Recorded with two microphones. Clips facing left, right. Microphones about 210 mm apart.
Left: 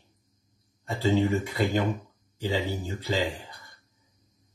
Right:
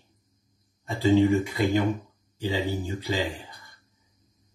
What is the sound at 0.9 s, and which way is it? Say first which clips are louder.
Speech: right 4 dB; 15° right (ahead or behind).